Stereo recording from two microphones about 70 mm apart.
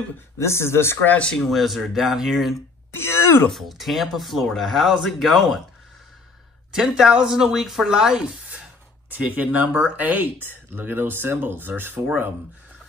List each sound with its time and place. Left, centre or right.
0.4 s speech: left
1.0 s speech: left
1.5 s speech: centre
2.9 s speech: left
3.4 s speech: centre
6.7 s speech: centre
9.1 s speech: right